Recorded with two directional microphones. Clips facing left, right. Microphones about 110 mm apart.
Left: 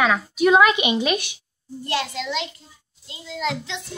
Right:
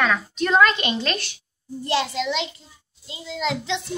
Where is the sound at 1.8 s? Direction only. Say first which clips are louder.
Right 3 dB; 25° right (ahead or behind).